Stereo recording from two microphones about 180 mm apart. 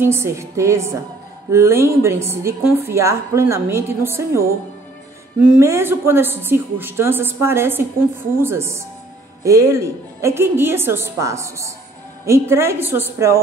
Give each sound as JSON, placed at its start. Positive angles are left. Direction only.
{"t": 0.0, "sound": "a woman's voice", "side_deg": -15}